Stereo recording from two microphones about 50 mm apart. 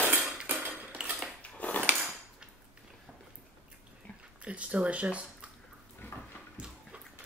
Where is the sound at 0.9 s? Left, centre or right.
Right.